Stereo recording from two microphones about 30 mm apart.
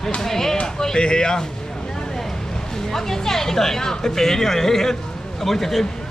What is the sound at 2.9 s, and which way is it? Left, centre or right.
Speech, centre.